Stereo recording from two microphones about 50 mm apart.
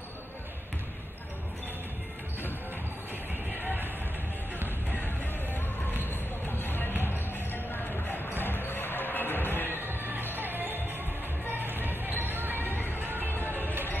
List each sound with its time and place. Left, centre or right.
4.9 s music: left
6.6 s music: left
9.7 s music: right
13.5 s music: left